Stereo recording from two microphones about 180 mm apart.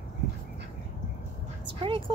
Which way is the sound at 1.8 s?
30° right (ahead or behind).